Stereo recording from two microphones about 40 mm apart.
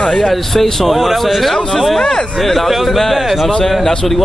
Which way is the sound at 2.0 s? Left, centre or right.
Centre.